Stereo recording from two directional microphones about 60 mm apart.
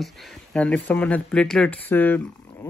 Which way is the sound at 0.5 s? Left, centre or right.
Left.